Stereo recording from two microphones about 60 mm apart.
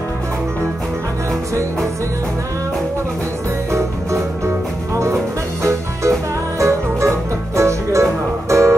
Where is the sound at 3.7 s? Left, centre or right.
Right.